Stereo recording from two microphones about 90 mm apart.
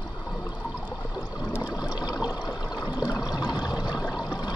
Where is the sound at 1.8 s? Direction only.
50° left (ahead or behind).